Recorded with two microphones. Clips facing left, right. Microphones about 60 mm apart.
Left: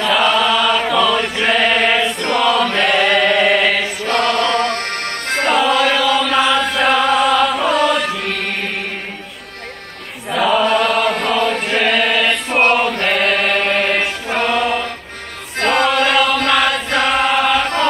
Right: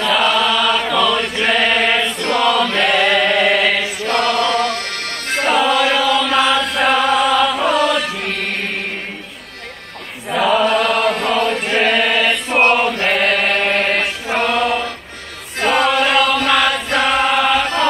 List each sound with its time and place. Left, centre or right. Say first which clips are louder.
0.0 s chant: left 1 dB; centre
4.6 s music: left 1 dB; left
5.4 s chant: even; centre
6.8 s music: even; centre
10.3 s chant: even; centre